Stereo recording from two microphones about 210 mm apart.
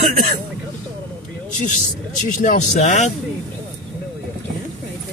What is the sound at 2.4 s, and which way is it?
Speech, 35° left (ahead or behind).